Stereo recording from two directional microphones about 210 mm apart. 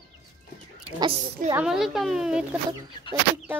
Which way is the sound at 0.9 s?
25° right (ahead or behind).